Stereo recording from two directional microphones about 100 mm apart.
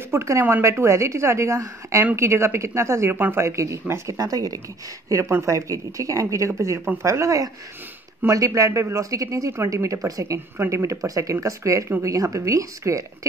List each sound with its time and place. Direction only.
0.1 s speech: 25° right (ahead or behind)
4.2 s speech: 40° right (ahead or behind)